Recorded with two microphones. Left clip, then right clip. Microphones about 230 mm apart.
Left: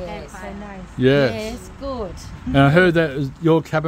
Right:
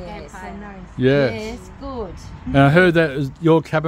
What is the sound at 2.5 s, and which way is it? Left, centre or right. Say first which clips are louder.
A man's voice: right 1 dB; centre.